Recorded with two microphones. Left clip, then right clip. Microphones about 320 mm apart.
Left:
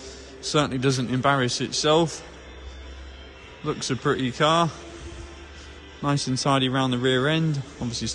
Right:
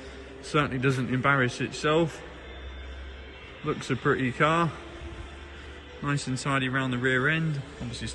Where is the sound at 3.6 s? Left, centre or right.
Centre.